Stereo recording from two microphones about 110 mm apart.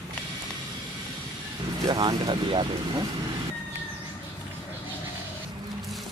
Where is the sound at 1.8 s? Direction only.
40° right (ahead or behind).